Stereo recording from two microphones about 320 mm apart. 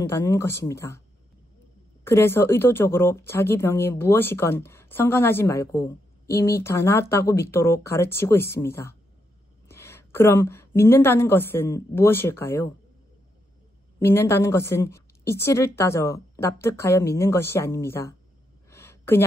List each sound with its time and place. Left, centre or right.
0.0 s speech: centre
2.0 s a woman's voice: centre
13.9 s speech: centre
18.7 s a sound: centre